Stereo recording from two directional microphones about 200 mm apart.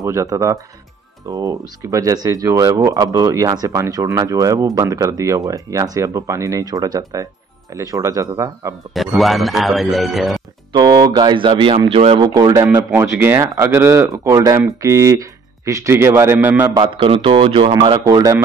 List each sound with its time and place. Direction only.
0.0 s speech: 15° right (ahead or behind)
8.9 s speech: centre (ahead or behind)
10.7 s speech: 20° right (ahead or behind)
12.3 s speech: 20° right (ahead or behind)